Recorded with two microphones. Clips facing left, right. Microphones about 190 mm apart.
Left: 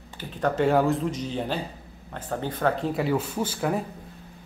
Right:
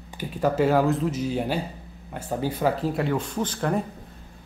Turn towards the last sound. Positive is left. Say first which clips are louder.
# right 1 dB
turn(degrees=5)  # may be behind; listen again after turning